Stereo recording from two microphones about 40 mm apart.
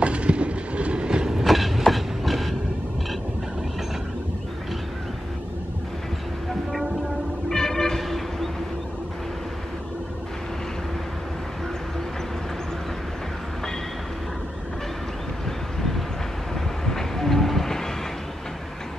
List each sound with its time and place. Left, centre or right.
0.0 s train: right
1.3 s train: centre
7.4 s music: centre
8.0 s vehicle: centre
16.5 s train: centre